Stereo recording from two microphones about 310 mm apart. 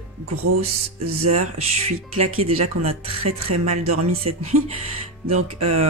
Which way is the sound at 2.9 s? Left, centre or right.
Right.